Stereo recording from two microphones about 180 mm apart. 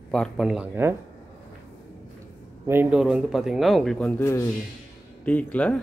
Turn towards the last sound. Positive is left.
turn(degrees=5)  # may be behind; listen again after turning